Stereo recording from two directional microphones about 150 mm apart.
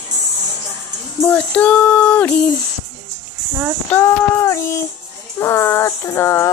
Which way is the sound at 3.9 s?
20° left (ahead or behind).